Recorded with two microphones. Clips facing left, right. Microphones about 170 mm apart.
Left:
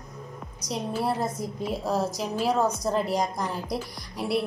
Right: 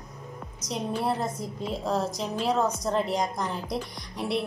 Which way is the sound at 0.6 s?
5° left (ahead or behind).